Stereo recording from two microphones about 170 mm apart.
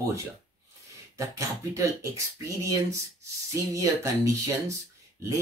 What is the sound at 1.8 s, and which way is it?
Speech, 20° right (ahead or behind).